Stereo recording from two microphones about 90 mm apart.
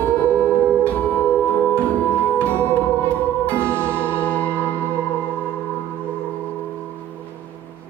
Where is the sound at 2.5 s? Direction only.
25° right (ahead or behind).